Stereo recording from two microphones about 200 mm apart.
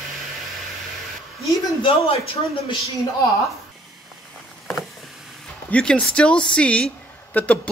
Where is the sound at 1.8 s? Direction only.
20° left (ahead or behind).